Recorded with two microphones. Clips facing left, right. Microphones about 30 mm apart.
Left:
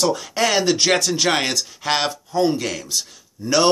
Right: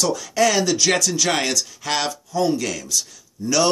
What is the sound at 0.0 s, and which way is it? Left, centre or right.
Speech, left.